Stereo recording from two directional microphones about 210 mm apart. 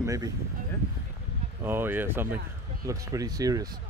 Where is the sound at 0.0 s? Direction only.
15° right (ahead or behind).